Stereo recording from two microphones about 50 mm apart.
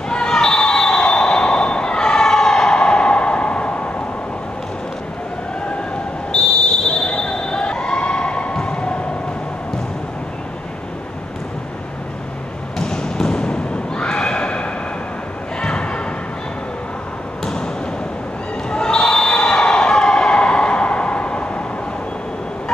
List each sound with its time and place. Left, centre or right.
0.1 s basketball bounce: centre
6.9 s basketball bounce: centre
12.7 s neigh: centre
15.6 s a sound: centre
18.7 s basketball bounce: centre